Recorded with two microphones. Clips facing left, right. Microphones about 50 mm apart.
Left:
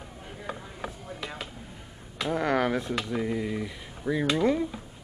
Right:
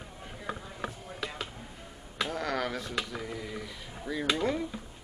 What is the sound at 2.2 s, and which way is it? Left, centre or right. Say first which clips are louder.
Speech: left 7 dB; centre.